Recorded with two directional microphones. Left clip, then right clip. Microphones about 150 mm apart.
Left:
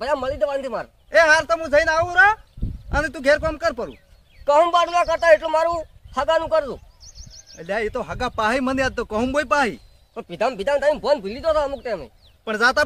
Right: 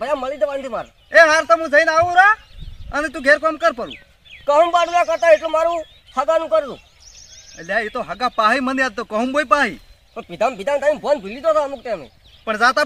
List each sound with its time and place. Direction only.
0.0 s speech: 15° left (ahead or behind)
1.1 s speech: 50° left (ahead or behind)
4.6 s speech: 15° left (ahead or behind)
7.5 s speech: 45° left (ahead or behind)
10.1 s speech: 20° left (ahead or behind)
12.4 s speech: 50° left (ahead or behind)